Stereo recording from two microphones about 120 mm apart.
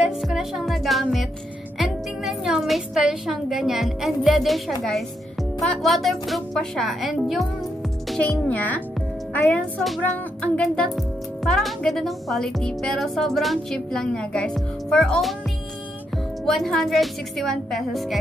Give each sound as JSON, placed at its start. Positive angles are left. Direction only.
{"t": 0.0, "sound": "music", "side_deg": -5}
{"t": 1.8, "sound": "a woman's voice", "side_deg": -5}
{"t": 8.2, "sound": "a child's voice", "side_deg": 10}
{"t": 16.4, "sound": "speech", "side_deg": 5}